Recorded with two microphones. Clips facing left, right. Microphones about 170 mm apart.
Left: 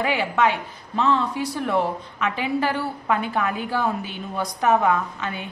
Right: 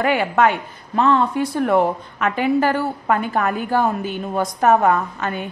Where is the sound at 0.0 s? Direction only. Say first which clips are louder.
Right 4 dB; 50° right (ahead or behind).